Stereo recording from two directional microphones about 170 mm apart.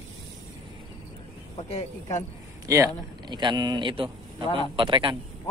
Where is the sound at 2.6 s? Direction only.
20° right (ahead or behind).